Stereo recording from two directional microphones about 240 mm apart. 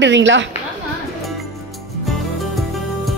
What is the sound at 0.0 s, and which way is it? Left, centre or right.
Speech, right.